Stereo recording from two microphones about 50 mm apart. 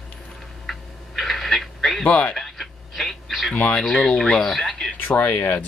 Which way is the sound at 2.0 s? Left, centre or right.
Left.